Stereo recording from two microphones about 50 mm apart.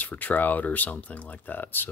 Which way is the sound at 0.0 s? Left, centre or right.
Left.